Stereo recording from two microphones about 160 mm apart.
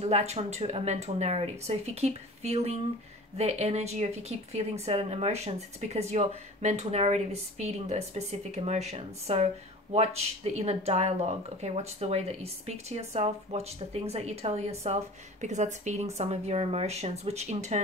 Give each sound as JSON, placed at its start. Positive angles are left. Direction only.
{"t": 0.0, "sound": "speech", "side_deg": -40}